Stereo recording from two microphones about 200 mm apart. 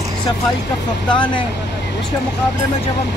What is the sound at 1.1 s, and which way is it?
Speech, 25° left (ahead or behind).